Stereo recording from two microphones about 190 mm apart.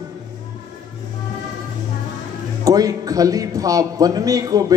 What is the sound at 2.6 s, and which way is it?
A man's voice, 20° right (ahead or behind).